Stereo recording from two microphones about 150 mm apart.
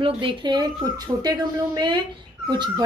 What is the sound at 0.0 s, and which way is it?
A woman's voice, 35° right (ahead or behind).